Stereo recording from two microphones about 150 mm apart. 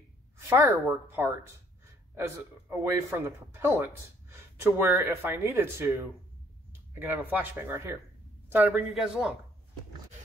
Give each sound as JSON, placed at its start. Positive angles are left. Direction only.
{"t": 0.5, "sound": "a man's voice", "side_deg": -15}
{"t": 6.9, "sound": "a man's voice", "side_deg": -15}
{"t": 8.9, "sound": "speech", "side_deg": -5}